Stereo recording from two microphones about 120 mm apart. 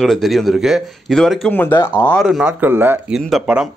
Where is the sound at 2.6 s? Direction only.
15° right (ahead or behind).